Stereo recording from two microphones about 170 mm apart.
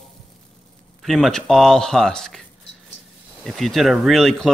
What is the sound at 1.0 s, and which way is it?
Speech, centre (ahead or behind).